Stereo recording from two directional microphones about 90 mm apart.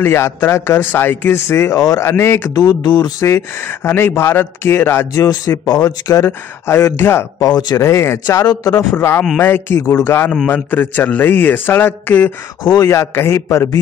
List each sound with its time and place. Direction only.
0.0 s a man's voice: 25° left (ahead or behind)
1.8 s speech: 45° left (ahead or behind)
2.0 s a man's voice: 30° left (ahead or behind)
2.5 s speech: 50° left (ahead or behind)
3.2 s a man's voice: 30° left (ahead or behind)
5.1 s speech: 40° left (ahead or behind)
7.4 s speech: 50° left (ahead or behind)
7.8 s a man's voice: 30° left (ahead or behind)
8.9 s a man's voice: 25° left (ahead or behind)